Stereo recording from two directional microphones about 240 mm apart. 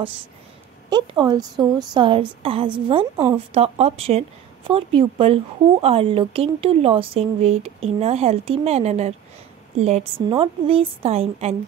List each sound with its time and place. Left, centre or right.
0.8 s speech: centre